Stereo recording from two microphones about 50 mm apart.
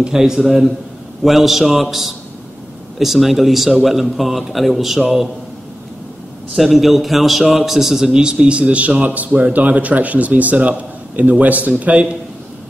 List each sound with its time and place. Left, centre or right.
0.1 s a man's voice: centre
6.5 s a man's voice: centre; by 12.2 s right